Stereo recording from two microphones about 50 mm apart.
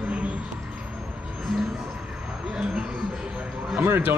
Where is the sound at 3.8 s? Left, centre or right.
Right.